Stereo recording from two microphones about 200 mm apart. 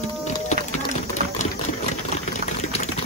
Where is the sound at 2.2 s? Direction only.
35° left (ahead or behind).